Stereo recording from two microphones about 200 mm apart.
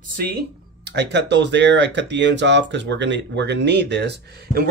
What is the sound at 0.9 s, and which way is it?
Speech, 60° right (ahead or behind).